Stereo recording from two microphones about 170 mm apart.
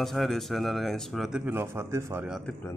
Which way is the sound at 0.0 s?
Centre (ahead or behind).